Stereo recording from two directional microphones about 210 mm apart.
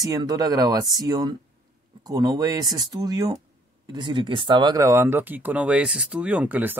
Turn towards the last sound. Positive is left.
turn(degrees=-5)  # may be behind; listen again after turning